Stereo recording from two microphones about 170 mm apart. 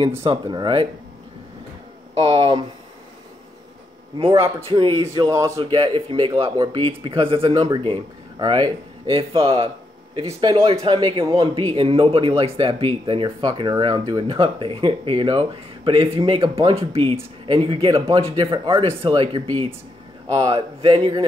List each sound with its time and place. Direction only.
0.2 s speech: 30° right (ahead or behind)
2.2 s speech: 30° right (ahead or behind)
4.2 s speech: 35° right (ahead or behind)
5.0 s speech: 20° right (ahead or behind)